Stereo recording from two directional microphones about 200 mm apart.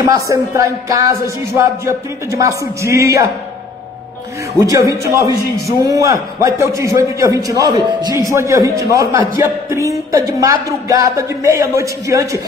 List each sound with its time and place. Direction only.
0.0 s speech: 15° right (ahead or behind)
4.6 s speech: 15° right (ahead or behind)